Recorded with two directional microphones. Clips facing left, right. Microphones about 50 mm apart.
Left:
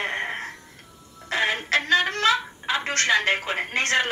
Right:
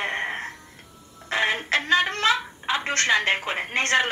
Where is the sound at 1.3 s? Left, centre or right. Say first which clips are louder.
Even; right.